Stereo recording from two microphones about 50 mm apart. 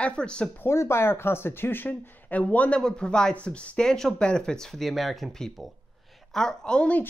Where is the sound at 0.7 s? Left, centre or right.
Left.